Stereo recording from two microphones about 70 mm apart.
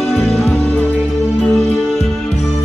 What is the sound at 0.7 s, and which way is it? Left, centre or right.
Music, left.